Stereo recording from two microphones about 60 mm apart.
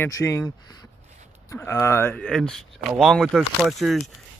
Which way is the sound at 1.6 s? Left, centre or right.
Left.